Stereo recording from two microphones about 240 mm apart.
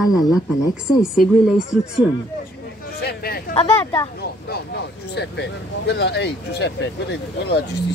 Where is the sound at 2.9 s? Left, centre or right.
Left.